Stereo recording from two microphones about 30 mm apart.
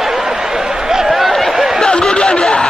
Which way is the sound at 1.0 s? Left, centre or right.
Centre.